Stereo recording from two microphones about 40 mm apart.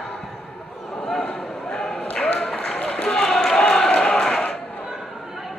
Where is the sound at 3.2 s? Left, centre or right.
Centre.